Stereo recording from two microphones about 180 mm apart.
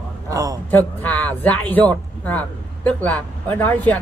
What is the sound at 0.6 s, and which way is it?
A man's voice, 10° left (ahead or behind).